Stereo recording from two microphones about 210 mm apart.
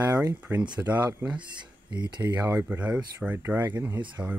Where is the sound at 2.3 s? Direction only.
10° right (ahead or behind).